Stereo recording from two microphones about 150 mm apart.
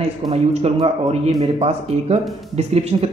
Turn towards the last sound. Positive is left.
turn(degrees=-45)  # may be behind; listen again after turning